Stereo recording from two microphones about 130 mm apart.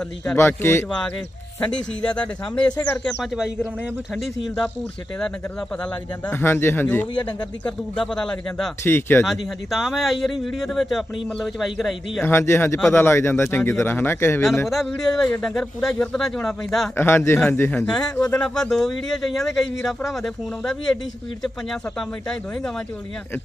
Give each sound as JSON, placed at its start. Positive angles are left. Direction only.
{"t": 0.4, "sound": "speech", "side_deg": 20}
{"t": 1.6, "sound": "a man's voice", "side_deg": 10}
{"t": 6.2, "sound": "a man's voice", "side_deg": 15}
{"t": 8.8, "sound": "a man's voice", "side_deg": 20}
{"t": 9.2, "sound": "a man's voice", "side_deg": 0}
{"t": 12.2, "sound": "speech", "side_deg": 20}
{"t": 14.7, "sound": "a man's voice", "side_deg": 0}
{"t": 16.9, "sound": "a man's voice", "side_deg": 20}
{"t": 18.0, "sound": "speech", "side_deg": 30}
{"t": 18.4, "sound": "a man's voice", "side_deg": 5}